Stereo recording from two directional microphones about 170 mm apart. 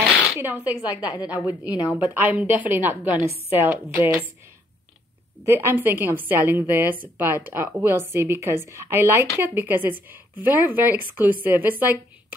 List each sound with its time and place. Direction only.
0.8 s a woman's voice: 20° left (ahead or behind)
2.0 s a woman's voice: 10° right (ahead or behind)
5.4 s a woman's voice: 15° right (ahead or behind)